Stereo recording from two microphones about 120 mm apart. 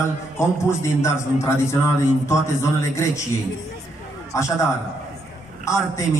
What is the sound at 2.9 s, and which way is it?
Speech, 25° left (ahead or behind).